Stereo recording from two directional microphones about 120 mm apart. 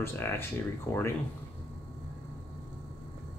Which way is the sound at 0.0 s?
20° left (ahead or behind).